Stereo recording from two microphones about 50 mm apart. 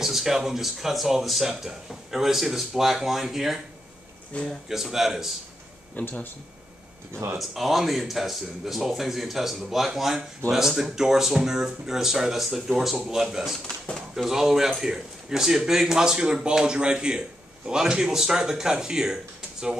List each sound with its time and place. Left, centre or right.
0.0 s speech: centre
4.3 s speech: left
4.6 s speech: centre
5.9 s speech: left
7.3 s speech: centre